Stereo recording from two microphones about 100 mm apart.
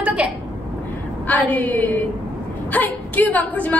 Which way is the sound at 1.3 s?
15° left (ahead or behind).